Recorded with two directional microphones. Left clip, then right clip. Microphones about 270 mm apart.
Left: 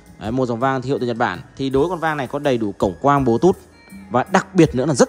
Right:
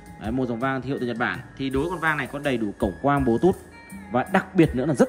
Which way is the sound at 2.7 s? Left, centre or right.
Right.